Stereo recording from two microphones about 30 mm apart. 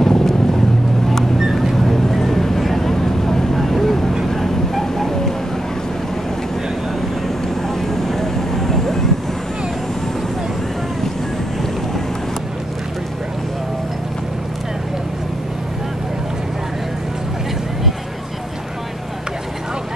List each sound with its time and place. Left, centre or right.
0.0 s boat: centre
1.6 s vehicle: centre
7.0 s vehicle: centre